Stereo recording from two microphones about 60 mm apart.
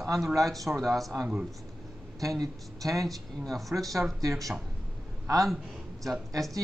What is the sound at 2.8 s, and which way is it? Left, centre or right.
Speech, right.